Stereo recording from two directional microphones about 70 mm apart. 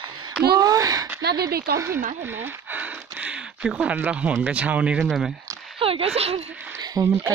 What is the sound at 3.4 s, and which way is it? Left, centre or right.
Speech, centre.